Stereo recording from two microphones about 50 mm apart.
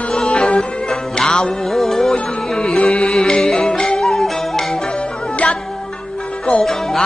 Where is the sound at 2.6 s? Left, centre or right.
Centre.